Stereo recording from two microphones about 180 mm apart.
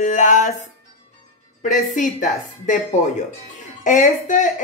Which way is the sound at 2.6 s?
45° left (ahead or behind).